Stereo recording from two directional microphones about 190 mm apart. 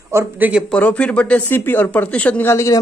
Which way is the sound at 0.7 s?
5° left (ahead or behind).